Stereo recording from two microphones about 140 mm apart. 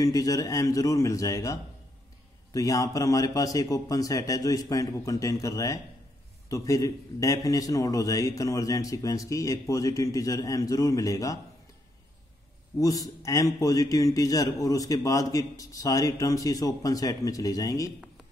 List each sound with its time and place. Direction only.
0.0 s a man's voice: 25° left (ahead or behind)
12.7 s a man's voice: 25° left (ahead or behind)